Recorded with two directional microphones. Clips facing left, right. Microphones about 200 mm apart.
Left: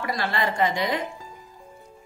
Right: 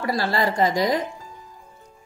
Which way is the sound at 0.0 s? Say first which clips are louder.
Right 4 dB; 35° right (ahead or behind).